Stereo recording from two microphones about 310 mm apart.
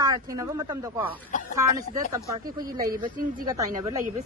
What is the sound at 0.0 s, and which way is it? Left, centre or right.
Speech, centre.